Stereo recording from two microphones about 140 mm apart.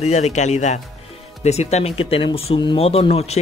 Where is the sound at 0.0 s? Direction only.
55° left (ahead or behind).